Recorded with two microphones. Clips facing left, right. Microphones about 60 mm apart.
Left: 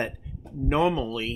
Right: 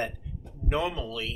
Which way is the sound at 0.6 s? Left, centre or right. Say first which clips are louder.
Left 6 dB; left.